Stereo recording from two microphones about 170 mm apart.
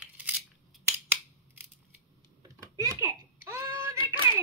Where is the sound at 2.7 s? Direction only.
20° right (ahead or behind).